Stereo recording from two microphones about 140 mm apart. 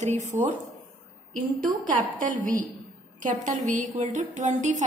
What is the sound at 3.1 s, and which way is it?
A woman's voice, 65° right (ahead or behind).